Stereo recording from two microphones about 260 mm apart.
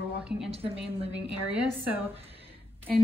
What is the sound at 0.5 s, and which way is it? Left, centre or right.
Speech, right.